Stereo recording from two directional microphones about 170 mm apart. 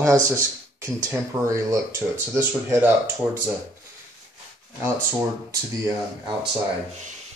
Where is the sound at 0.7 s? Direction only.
10° right (ahead or behind).